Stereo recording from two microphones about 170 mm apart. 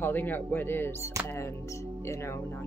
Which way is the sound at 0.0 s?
10° left (ahead or behind).